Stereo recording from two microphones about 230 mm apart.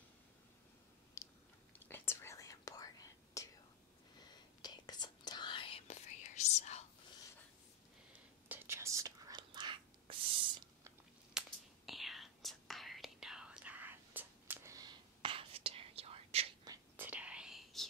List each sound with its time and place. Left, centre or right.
1.2 s chewing: centre
1.7 s whispering: centre
4.6 s whispering: centre
8.1 s whispering: centre
11.3 s whispering: centre; by 16.7 s right
16.7 s whispering: centre